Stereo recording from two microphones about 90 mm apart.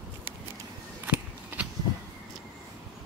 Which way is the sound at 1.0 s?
15° right (ahead or behind).